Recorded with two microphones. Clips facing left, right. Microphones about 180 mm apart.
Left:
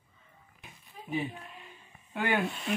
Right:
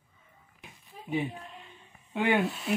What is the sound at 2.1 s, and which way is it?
Speech, 15° right (ahead or behind).